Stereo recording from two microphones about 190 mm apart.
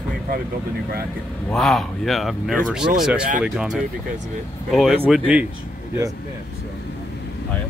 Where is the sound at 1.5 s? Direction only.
Centre (ahead or behind).